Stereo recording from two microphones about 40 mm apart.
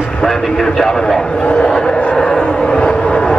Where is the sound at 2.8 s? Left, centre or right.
Centre.